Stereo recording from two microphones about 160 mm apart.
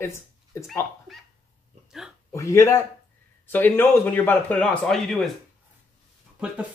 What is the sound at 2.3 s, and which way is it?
Speech, 20° left (ahead or behind).